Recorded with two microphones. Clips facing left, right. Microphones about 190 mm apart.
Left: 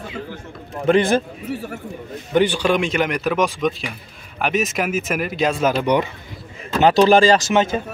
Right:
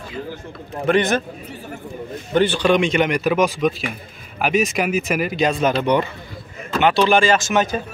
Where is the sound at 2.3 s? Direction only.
15° left (ahead or behind).